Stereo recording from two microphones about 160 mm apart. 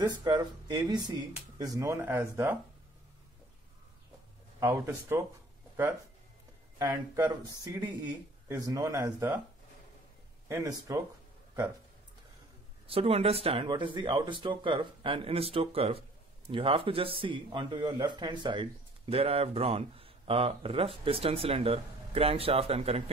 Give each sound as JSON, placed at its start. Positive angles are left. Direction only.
{"t": 0.0, "sound": "speech", "side_deg": -25}
{"t": 4.6, "sound": "speech", "side_deg": -15}
{"t": 6.8, "sound": "speech", "side_deg": -25}
{"t": 10.5, "sound": "speech", "side_deg": -20}
{"t": 12.8, "sound": "speech", "side_deg": -35}